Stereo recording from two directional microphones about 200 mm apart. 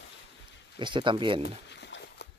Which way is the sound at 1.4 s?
60° left (ahead or behind).